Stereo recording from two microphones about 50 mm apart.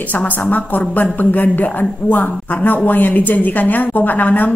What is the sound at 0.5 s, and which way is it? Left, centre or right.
A woman's voice, left.